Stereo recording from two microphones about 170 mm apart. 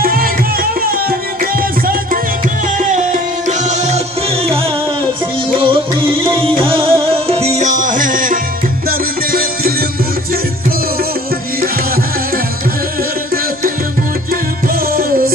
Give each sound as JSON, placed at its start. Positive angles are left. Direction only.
{"t": 0.0, "sound": "music", "side_deg": -60}
{"t": 2.8, "sound": "music", "side_deg": -45}
{"t": 5.5, "sound": "music", "side_deg": -30}
{"t": 15.0, "sound": "music", "side_deg": -60}